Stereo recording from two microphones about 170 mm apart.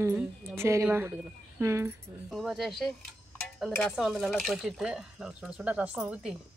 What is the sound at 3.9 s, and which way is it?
Speech, 5° right (ahead or behind).